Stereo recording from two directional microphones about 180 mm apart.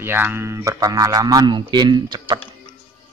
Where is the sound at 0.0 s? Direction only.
10° right (ahead or behind).